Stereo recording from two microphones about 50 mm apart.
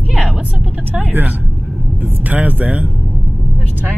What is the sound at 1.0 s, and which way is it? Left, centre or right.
Speech, right.